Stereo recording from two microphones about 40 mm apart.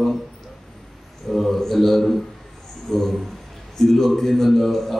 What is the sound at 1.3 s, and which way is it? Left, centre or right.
A man's voice, centre.